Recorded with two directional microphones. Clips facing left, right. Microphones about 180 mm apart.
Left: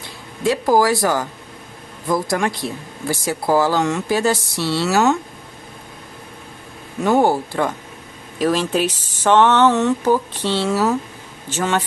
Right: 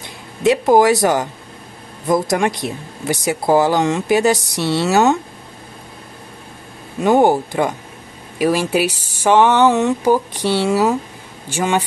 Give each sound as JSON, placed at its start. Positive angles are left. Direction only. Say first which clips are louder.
{"t": 0.4, "sound": "speech", "louder": "right 4 dB", "side_deg": -20}
{"t": 7.0, "sound": "speech", "louder": "right 3 dB", "side_deg": -20}